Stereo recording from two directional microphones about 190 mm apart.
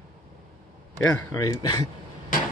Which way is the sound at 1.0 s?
15° left (ahead or behind).